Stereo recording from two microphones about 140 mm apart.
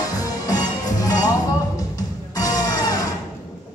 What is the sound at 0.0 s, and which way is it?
Music, 25° left (ahead or behind).